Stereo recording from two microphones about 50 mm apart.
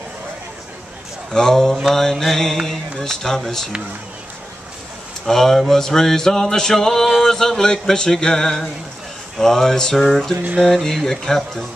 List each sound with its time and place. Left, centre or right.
1.3 s male singing: centre
5.2 s male singing: centre